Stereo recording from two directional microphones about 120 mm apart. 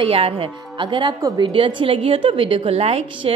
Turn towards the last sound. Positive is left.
turn(degrees=-50)  # may be behind; listen again after turning